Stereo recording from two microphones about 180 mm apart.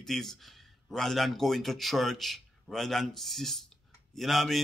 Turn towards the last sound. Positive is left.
turn(degrees=0)  # may be behind; listen again after turning